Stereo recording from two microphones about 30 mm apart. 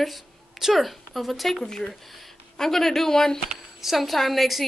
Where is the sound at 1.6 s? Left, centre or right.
Left.